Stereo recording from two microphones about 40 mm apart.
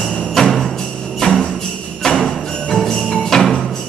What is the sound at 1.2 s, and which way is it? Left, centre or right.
Music, centre.